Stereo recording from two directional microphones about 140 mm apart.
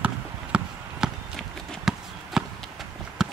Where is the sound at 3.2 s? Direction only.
5° right (ahead or behind).